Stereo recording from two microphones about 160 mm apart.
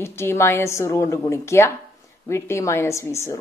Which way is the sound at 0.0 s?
15° left (ahead or behind).